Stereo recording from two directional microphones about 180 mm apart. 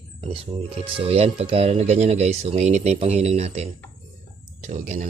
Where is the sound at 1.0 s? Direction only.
35° right (ahead or behind).